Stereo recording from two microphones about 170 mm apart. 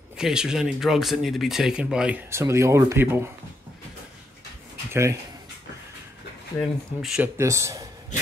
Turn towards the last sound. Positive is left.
turn(degrees=-20)  # may be behind; listen again after turning